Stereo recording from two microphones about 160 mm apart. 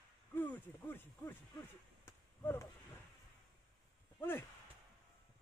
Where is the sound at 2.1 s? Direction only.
15° left (ahead or behind).